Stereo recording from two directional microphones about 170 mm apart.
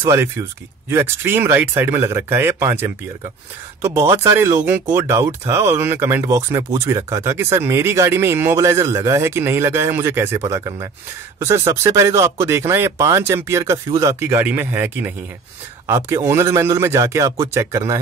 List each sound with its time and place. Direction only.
0.0 s speech: 15° right (ahead or behind)
16.3 s speech: 15° right (ahead or behind)